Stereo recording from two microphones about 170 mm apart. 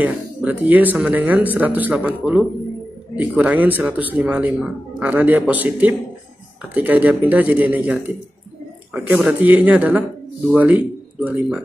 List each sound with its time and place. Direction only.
0.0 s speech: 10° right (ahead or behind)